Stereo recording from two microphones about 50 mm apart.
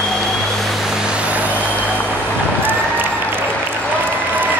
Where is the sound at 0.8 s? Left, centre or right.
Centre; by 1.6 s right.